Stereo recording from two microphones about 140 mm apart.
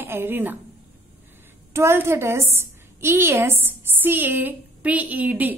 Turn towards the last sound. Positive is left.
turn(degrees=-10)  # may be behind; listen again after turning